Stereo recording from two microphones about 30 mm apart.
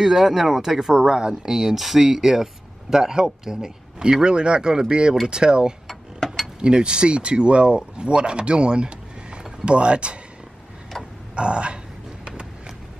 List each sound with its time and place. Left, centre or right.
0.0 s speech: centre
4.0 s speech: right
5.9 s mechanisms: centre
6.6 s speech: right
11.3 s speech: right